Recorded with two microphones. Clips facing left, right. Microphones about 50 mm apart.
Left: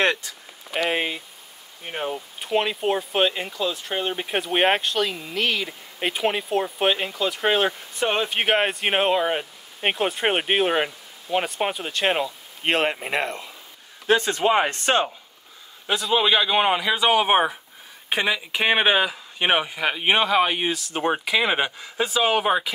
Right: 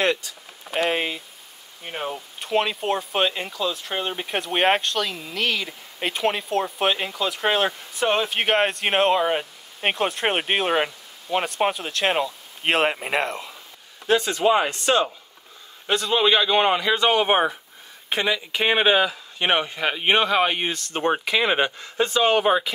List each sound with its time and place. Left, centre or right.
0.8 s speech: centre
14.0 s speech: left
15.9 s speech: centre
18.6 s speech: left
18.9 s speech: centre